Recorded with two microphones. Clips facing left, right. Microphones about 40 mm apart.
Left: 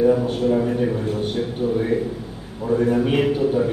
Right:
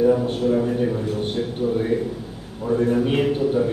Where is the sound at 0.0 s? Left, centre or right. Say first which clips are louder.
Left 1 dB; centre.